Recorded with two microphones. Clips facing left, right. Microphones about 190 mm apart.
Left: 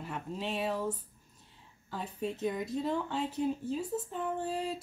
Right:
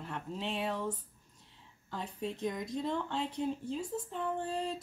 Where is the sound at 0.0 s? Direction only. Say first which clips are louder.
Left 1 dB; 5° left (ahead or behind).